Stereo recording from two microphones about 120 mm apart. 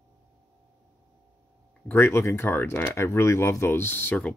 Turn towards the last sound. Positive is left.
turn(degrees=15)  # may be behind; listen again after turning